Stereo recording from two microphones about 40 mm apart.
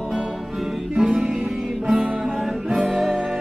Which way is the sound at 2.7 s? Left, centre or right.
Centre.